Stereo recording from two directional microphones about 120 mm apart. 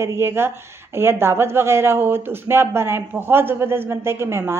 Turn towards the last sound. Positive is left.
turn(degrees=-20)  # may be behind; listen again after turning